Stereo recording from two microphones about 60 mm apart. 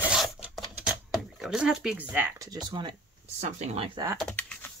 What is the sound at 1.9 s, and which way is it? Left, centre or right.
Speech, right.